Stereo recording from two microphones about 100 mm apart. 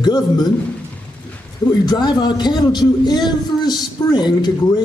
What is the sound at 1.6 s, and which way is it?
A man's voice, 45° left (ahead or behind).